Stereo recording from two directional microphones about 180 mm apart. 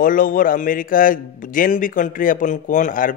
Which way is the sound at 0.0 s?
50° left (ahead or behind).